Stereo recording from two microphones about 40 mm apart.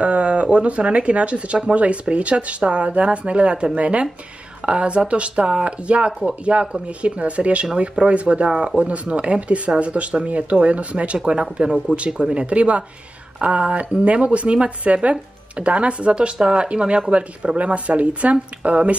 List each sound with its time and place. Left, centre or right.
0.0 s speech: right